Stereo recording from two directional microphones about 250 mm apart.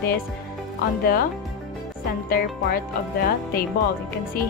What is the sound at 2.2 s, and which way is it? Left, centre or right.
Speech, left.